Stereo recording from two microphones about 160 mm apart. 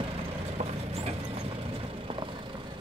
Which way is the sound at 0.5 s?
40° right (ahead or behind).